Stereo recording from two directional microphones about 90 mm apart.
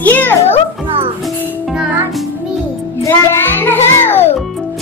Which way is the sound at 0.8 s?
80° right.